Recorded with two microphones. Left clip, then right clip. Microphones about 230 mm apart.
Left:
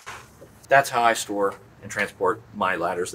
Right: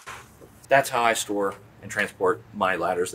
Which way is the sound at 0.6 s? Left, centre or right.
Right.